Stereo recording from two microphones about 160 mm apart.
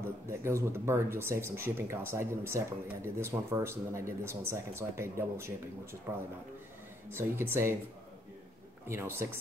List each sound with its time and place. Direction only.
0.3 s speech: 15° right (ahead or behind)
7.2 s speech: 15° right (ahead or behind)
8.8 s speech: 15° right (ahead or behind)